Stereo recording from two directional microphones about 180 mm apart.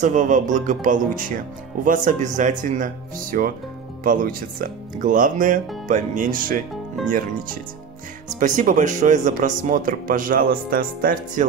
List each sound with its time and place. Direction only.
0.0 s speech: 45° right (ahead or behind)